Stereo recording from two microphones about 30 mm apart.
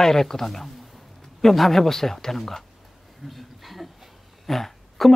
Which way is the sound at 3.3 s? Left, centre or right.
Centre.